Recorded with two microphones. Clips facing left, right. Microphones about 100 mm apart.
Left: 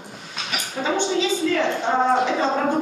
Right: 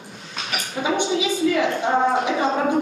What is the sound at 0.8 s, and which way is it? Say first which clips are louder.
A woman's voice: even; 10° right (ahead or behind).